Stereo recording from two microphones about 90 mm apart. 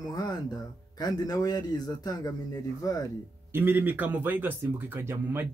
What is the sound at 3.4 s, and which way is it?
Speech, 25° right (ahead or behind).